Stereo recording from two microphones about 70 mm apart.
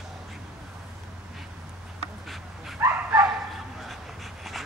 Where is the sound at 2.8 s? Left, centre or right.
Right.